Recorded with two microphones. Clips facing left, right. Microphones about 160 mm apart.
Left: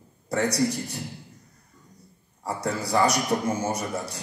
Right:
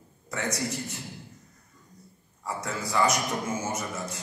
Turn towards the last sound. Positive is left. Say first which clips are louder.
# left 3 dB
turn(degrees=35)  # may be behind; listen again after turning